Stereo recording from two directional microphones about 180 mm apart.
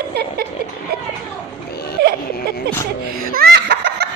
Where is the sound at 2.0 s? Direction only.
65° right (ahead or behind).